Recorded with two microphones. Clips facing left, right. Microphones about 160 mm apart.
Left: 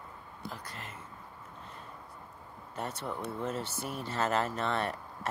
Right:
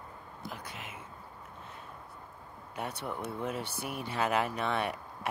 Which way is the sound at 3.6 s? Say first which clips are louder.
Even; 60° right (ahead or behind).